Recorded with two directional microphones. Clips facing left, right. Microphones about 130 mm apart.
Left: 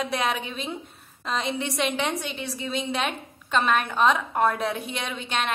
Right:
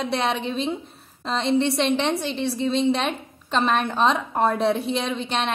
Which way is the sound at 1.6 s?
30° right (ahead or behind).